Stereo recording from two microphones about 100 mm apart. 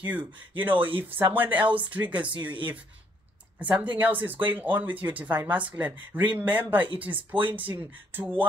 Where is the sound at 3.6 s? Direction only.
15° right (ahead or behind).